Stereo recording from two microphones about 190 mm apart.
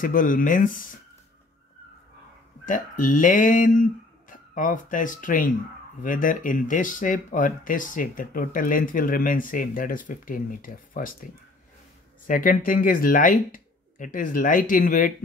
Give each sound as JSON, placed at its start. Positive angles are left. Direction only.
{"t": 0.0, "sound": "speech", "side_deg": 45}
{"t": 2.6, "sound": "speech", "side_deg": 45}
{"t": 12.3, "sound": "speech", "side_deg": 45}